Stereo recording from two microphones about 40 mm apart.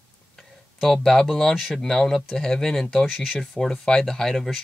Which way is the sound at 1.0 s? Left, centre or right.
Centre.